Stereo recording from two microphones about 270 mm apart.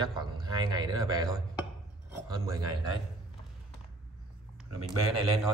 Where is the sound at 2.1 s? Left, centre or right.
Centre.